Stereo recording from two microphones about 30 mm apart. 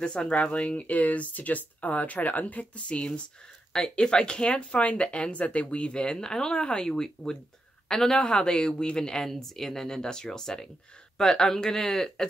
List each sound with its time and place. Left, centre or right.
0.0 s speech: left
2.9 s speech: left; by 8.2 s centre
8.4 s speech: left
9.2 s speech: centre